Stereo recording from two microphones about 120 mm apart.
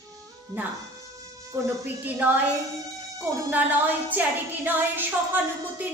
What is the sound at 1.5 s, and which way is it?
Speech, 20° right (ahead or behind).